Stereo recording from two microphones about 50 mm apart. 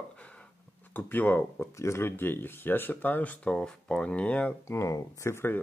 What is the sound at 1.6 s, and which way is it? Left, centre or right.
Speech, left.